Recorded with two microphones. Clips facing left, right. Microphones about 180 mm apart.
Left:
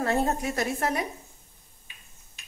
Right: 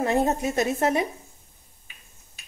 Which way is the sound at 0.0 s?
20° right (ahead or behind).